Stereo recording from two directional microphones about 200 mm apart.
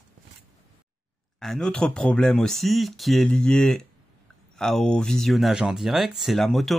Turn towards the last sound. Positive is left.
turn(degrees=0)  # may be behind; listen again after turning